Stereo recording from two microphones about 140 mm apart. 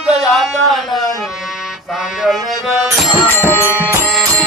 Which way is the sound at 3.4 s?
15° right (ahead or behind).